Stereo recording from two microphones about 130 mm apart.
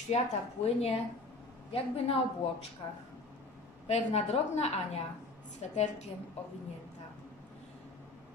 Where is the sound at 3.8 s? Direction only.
60° left (ahead or behind).